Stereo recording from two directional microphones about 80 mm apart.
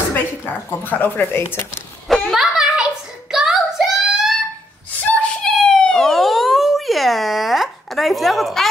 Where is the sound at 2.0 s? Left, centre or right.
Centre.